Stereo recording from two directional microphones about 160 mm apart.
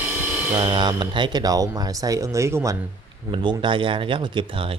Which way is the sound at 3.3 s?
30° right (ahead or behind).